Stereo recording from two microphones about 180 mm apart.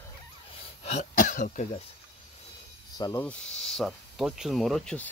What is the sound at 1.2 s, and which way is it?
Speech, 45° left (ahead or behind).